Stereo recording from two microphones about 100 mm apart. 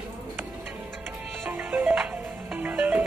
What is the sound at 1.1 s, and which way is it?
Music, 20° right (ahead or behind).